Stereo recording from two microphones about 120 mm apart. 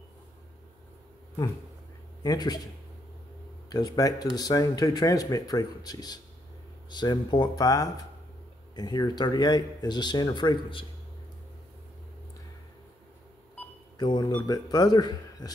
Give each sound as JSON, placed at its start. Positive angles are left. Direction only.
{"t": 2.2, "sound": "speech", "side_deg": 35}
{"t": 13.9, "sound": "speech", "side_deg": 35}